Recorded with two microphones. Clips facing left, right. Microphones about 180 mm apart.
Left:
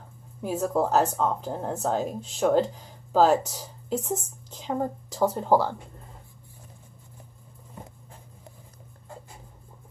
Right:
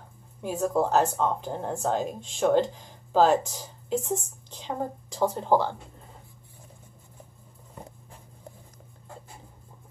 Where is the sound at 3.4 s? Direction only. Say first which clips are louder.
Left 1 dB; 40° left (ahead or behind).